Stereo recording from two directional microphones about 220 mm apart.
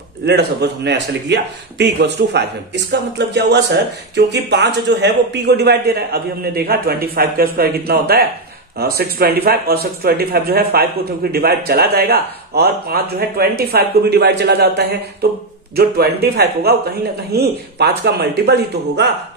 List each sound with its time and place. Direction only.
0.3 s a man's voice: 50° right (ahead or behind)